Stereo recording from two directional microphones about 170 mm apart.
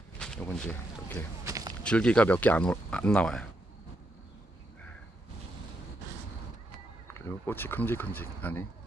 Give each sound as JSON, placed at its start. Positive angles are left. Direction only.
{"t": 0.2, "sound": "speech", "side_deg": 5}
{"t": 1.4, "sound": "a sound", "side_deg": -20}
{"t": 1.8, "sound": "speech", "side_deg": 5}
{"t": 7.2, "sound": "speech", "side_deg": 10}